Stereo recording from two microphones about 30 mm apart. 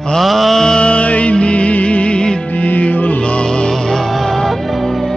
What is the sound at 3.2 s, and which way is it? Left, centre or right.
Music, left.